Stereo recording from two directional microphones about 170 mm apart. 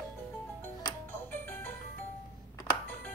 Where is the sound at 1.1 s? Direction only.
15° left (ahead or behind).